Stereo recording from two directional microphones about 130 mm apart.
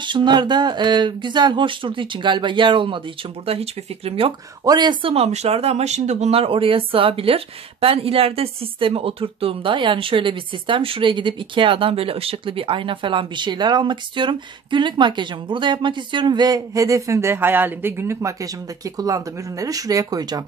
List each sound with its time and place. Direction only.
0.0 s speech: 35° right (ahead or behind)
4.6 s speech: 30° right (ahead or behind)
5.0 s speech: 50° right (ahead or behind); by 20.4 s 30° right (ahead or behind)